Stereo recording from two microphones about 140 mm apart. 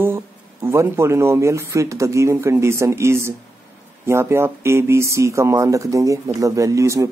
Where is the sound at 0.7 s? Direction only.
20° right (ahead or behind).